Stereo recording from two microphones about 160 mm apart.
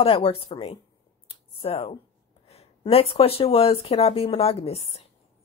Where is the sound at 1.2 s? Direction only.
35° left (ahead or behind).